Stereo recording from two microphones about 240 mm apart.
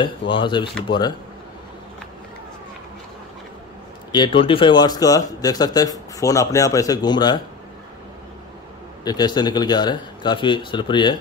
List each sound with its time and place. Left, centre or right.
0.0 s a man's voice: left
4.1 s speech: centre
9.0 s a man's voice: centre